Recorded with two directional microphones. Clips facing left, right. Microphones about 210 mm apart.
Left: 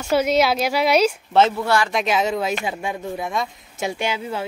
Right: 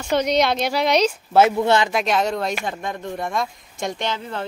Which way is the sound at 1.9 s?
Centre (ahead or behind).